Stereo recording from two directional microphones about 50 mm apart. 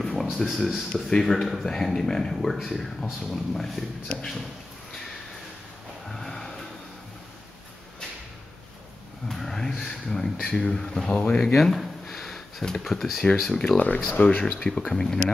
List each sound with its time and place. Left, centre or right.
0.0 s a sound: centre
0.5 s speech: centre
6.0 s music: centre
9.3 s vehicle: centre
10.4 s speech: centre
11.5 s a sound: centre
12.9 s speech: centre
13.7 s speech: left
14.4 s speech: centre